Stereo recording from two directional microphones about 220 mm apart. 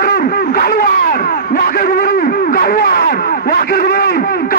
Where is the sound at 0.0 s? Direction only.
40° left (ahead or behind).